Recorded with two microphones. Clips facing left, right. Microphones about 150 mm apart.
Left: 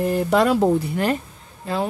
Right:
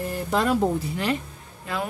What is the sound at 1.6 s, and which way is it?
Speech, 30° left (ahead or behind).